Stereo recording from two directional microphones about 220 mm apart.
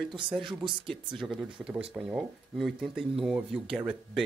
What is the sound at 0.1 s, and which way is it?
Speech, 20° right (ahead or behind).